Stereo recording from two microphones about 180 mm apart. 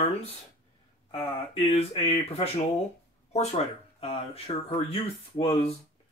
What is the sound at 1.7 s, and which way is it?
Speech, 35° left (ahead or behind).